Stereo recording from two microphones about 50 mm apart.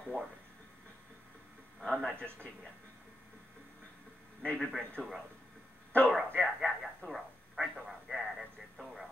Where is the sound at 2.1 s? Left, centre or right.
Right.